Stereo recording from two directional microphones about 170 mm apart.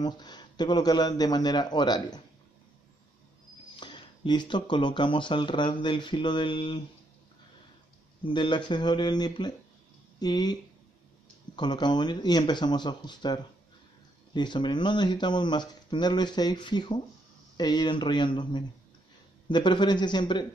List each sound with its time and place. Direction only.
0.0 s speech: 25° left (ahead or behind)
3.8 s speech: 25° left (ahead or behind)
8.2 s speech: 30° left (ahead or behind)